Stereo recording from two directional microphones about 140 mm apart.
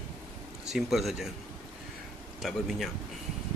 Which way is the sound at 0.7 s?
Centre (ahead or behind).